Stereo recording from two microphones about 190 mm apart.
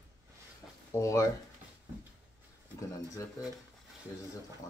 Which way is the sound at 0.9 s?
15° left (ahead or behind).